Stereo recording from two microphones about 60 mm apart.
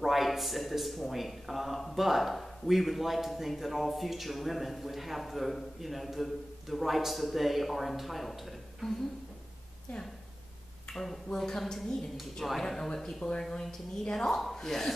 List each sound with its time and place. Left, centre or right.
0.0 s speech: centre
10.9 s speech: centre